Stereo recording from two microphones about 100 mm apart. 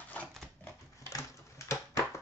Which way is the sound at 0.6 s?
30° left (ahead or behind).